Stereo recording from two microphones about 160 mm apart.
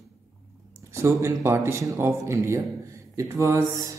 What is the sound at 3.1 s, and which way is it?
Mantra, 20° right (ahead or behind).